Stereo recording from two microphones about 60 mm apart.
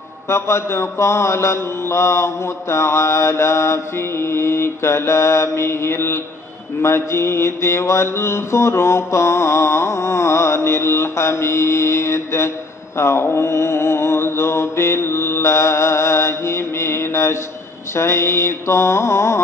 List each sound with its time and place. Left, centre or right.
0.3 s mantra: left